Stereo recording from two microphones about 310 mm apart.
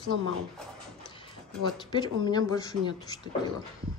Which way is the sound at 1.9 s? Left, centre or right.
Centre.